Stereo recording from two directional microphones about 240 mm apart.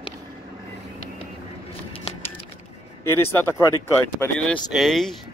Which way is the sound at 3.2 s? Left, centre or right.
Centre.